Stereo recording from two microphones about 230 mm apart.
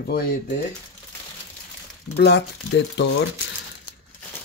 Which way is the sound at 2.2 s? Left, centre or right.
Left.